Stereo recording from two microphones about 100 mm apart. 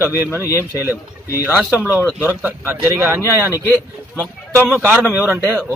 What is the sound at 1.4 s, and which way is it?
Speech, 15° right (ahead or behind).